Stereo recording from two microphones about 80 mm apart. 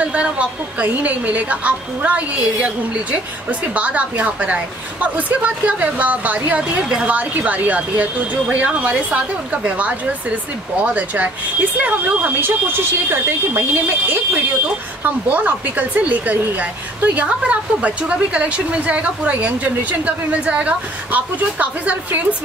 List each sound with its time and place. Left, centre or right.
0.0 s speech: centre